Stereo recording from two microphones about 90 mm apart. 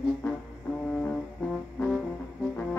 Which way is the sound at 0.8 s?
10° left (ahead or behind).